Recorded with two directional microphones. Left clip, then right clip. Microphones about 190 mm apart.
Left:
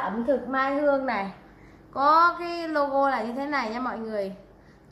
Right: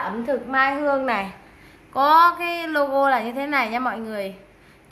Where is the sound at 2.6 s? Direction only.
40° right (ahead or behind).